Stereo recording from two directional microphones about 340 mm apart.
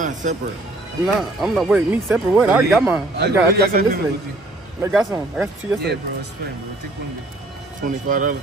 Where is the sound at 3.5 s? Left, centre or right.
Right.